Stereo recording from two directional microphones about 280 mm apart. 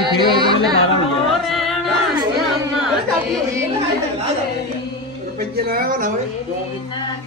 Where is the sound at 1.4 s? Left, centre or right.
Centre.